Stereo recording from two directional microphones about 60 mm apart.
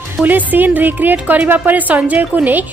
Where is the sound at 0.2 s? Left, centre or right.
Right.